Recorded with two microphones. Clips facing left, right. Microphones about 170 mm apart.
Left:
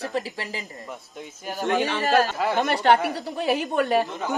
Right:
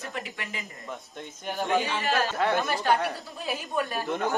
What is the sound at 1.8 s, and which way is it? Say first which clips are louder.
Speech: left 6 dB; 40° left (ahead or behind).